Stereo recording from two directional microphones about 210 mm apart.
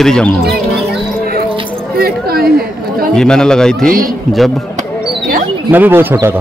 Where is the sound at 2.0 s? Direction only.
45° right (ahead or behind).